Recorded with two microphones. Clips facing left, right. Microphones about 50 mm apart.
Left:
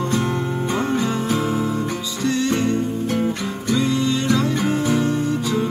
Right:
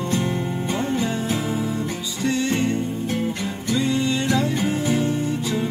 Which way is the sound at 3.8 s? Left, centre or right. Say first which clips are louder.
Left 1 dB; right.